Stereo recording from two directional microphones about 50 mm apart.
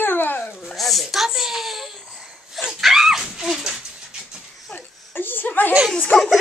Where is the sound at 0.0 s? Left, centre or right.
Left.